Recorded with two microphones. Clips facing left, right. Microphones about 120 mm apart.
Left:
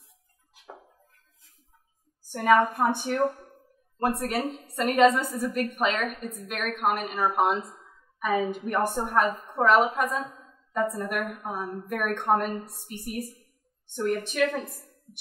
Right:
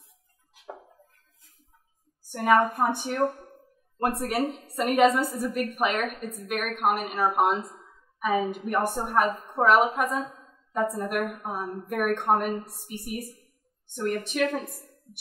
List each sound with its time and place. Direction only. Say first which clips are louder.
2.3 s a woman's voice: even; 5° right (ahead or behind)